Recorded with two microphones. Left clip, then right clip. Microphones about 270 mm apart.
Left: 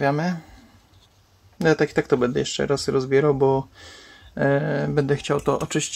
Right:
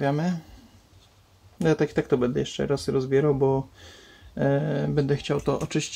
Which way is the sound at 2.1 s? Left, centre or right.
Left.